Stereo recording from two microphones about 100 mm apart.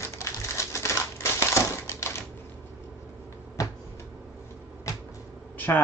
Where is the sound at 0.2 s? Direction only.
30° left (ahead or behind).